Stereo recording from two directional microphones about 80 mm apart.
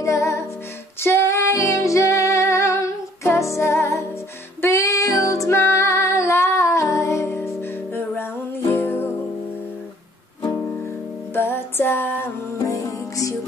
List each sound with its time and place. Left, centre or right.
0.0 s music: left
1.0 s female singing: left
3.3 s music: left
4.6 s female singing: left
10.5 s music: left
12.5 s music: left